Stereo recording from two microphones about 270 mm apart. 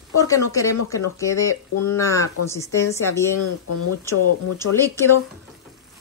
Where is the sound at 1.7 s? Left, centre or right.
Left.